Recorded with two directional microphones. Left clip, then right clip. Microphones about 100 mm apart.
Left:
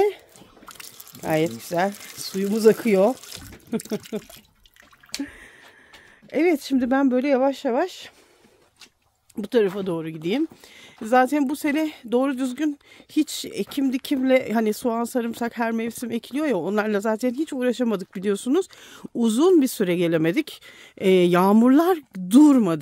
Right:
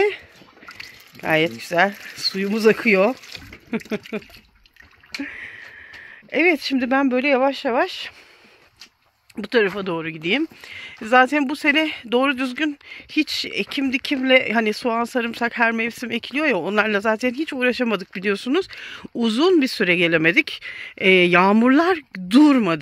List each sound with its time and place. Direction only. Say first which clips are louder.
1.1 s speech: right 4 dB; 25° left (ahead or behind)
5.2 s a sound: right 7 dB; 35° left (ahead or behind)
6.3 s speech: right 3 dB; 45° left (ahead or behind)
9.3 s speech: right 2 dB; 25° left (ahead or behind); by 19.9 s 45° left (ahead or behind)
19.9 s speech: right 5 dB; 30° left (ahead or behind)